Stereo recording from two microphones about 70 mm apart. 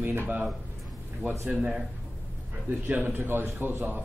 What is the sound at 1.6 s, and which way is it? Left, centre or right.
Speech, centre.